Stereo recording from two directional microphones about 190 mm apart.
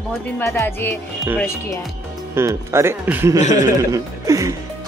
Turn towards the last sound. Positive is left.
turn(degrees=-15)  # may be behind; listen again after turning